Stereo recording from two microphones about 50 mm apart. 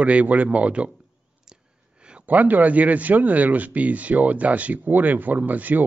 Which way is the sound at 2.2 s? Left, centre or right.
Right.